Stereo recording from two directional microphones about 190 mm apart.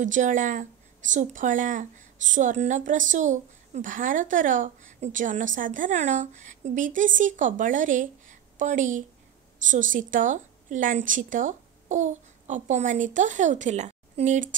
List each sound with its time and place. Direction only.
0.0 s a woman's voice: 40° right (ahead or behind)